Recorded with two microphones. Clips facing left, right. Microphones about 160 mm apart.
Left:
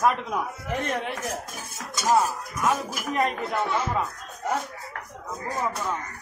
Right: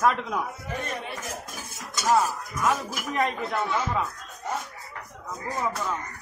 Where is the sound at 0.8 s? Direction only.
90° left.